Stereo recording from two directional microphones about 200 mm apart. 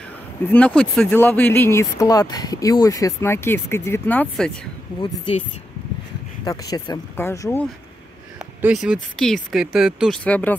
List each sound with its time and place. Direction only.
0.5 s speech: 5° left (ahead or behind)
5.0 s speech: 30° left (ahead or behind)
6.4 s speech: 20° left (ahead or behind)
8.4 s speech: 5° right (ahead or behind)